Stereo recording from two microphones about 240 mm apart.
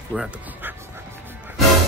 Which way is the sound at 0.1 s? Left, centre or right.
Centre.